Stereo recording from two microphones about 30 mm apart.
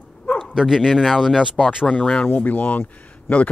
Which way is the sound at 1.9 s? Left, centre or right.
Left.